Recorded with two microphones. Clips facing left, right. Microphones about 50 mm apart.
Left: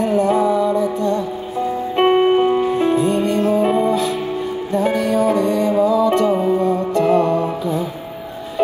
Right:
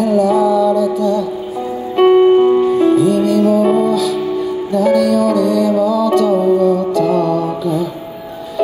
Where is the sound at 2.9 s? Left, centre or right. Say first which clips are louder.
Right 5 dB; left.